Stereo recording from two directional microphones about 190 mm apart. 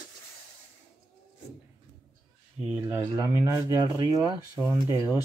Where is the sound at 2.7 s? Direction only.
10° right (ahead or behind).